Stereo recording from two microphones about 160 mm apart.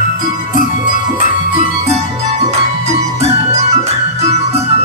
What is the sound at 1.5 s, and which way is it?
Music, 40° right (ahead or behind).